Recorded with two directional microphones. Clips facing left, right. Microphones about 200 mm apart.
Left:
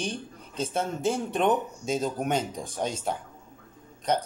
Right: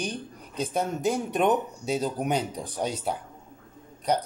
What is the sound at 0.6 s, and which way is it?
Speech, 10° right (ahead or behind).